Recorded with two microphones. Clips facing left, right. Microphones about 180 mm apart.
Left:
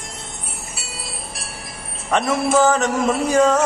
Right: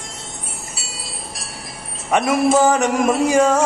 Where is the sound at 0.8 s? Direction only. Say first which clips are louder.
Left 1 dB; 55° left (ahead or behind).